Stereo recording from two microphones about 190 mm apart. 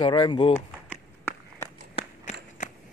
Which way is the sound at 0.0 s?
25° left (ahead or behind).